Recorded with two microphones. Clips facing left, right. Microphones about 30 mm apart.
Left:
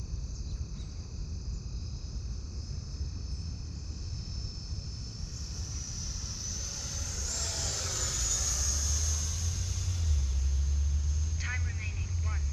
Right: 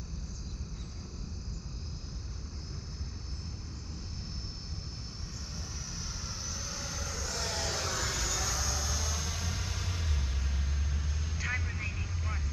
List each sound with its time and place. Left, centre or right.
5.9 s vehicle: centre; by 12.4 s right